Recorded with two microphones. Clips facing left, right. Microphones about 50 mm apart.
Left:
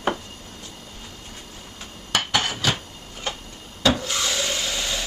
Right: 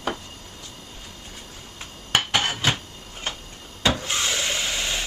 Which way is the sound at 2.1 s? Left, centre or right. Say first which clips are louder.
Right 1 dB; right.